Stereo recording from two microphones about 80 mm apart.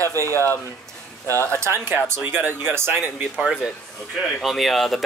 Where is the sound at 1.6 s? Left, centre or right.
Right.